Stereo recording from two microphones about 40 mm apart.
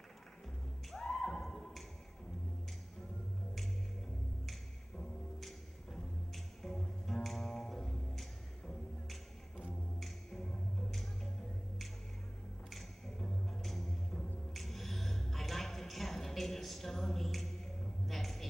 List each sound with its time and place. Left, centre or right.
0.9 s neigh: centre
5.4 s music: centre
12.6 s music: centre
18.0 s a sound: centre